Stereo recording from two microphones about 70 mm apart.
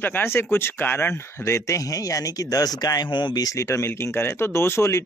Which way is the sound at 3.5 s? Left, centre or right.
Left.